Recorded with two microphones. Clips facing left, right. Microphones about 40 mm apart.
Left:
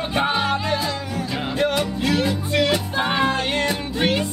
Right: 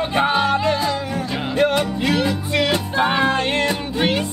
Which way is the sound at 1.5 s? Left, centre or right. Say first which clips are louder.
Right 4 dB; right.